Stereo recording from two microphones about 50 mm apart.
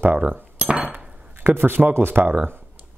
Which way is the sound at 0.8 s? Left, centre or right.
Right.